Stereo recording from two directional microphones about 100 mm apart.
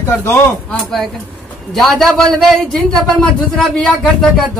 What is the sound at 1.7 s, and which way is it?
A man's voice, 5° left (ahead or behind).